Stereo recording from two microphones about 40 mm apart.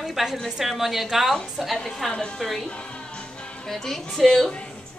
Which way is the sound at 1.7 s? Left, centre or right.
Centre.